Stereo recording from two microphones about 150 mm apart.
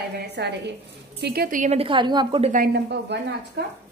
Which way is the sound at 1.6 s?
40° right (ahead or behind).